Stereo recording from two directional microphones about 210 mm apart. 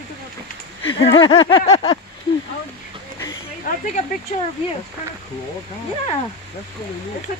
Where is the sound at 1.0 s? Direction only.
25° left (ahead or behind).